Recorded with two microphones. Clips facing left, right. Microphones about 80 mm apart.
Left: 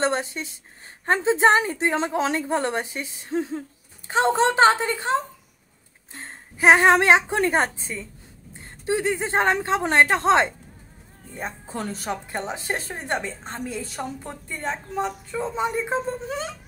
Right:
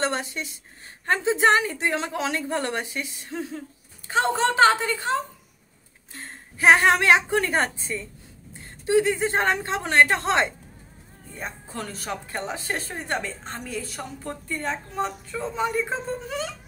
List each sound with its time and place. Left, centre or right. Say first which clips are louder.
0.0 s a woman's voice: left 3 dB; left